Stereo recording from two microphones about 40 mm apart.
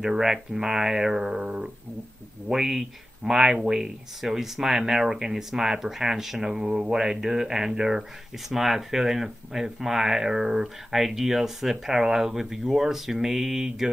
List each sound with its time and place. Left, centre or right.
0.0 s speech: centre
6.6 s speech: right
8.5 s speech: centre